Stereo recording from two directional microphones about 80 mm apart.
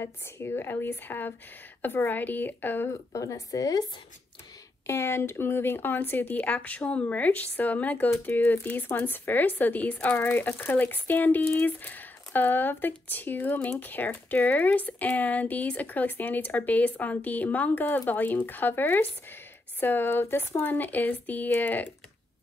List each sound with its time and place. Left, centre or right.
0.0 s speech: left
3.1 s speech: left
4.8 s speech: left